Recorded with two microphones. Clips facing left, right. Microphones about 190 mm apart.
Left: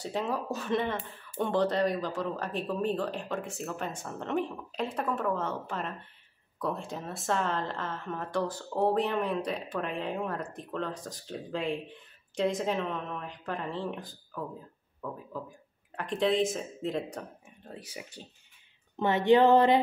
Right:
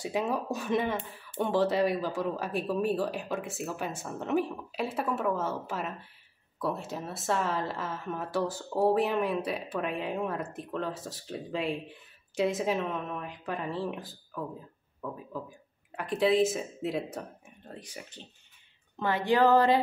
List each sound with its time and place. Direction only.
0.0 s a woman's voice: 10° right (ahead or behind)
16.0 s a woman's voice: 5° right (ahead or behind)
17.6 s speech: 5° left (ahead or behind)
18.9 s speech: 20° left (ahead or behind)